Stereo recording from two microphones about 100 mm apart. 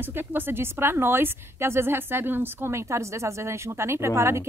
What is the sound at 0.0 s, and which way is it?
A woman's voice, 20° right (ahead or behind).